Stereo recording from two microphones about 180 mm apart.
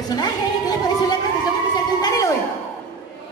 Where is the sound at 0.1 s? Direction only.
20° left (ahead or behind).